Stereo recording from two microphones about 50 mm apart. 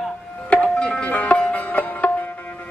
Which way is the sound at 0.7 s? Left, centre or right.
Centre.